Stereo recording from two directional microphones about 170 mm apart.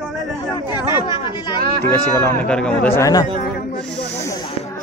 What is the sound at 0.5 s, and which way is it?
Chatter, 25° left (ahead or behind).